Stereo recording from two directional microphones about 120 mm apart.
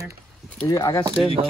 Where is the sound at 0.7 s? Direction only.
25° left (ahead or behind).